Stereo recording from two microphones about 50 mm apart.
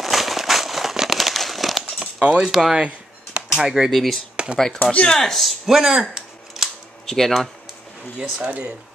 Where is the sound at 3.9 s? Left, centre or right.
Centre.